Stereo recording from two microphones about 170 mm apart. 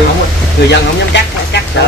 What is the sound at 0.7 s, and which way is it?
Speech, 90° left.